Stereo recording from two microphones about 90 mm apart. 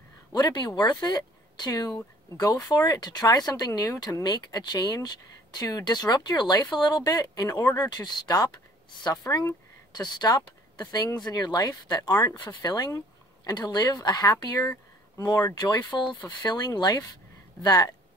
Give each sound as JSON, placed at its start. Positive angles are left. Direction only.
{"t": 0.3, "sound": "speech", "side_deg": 45}
{"t": 4.2, "sound": "speech", "side_deg": 50}
{"t": 15.5, "sound": "speech", "side_deg": 55}